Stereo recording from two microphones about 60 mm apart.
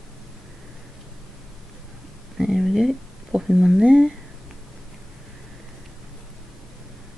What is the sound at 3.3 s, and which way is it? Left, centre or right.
Speech, centre.